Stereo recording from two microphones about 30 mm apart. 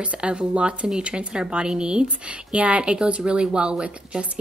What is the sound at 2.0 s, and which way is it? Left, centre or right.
Speech, right.